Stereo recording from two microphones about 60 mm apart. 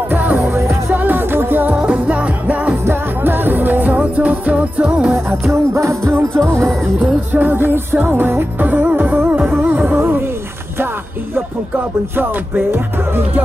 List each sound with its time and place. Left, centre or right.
0.1 s music: right
0.5 s music: right
0.8 s music: right
1.8 s music: right
2.8 s music: right; by 5.1 s centre
5.5 s music: right
7.3 s music: right
12.2 s music: right